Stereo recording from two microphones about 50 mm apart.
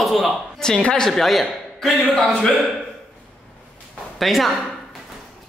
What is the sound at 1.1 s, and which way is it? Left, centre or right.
Speech, centre.